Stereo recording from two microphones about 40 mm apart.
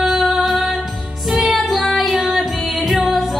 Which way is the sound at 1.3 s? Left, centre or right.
Centre.